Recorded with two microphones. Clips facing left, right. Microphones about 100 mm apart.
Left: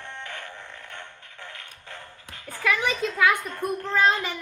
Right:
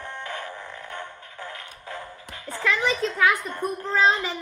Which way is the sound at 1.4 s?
35° right (ahead or behind).